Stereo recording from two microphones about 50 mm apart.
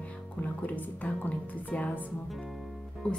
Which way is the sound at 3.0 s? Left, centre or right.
Left.